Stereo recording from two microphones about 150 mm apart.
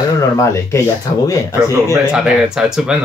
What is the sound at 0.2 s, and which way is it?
Speech, 20° left (ahead or behind).